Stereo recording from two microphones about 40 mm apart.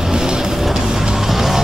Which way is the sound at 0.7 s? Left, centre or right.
Centre.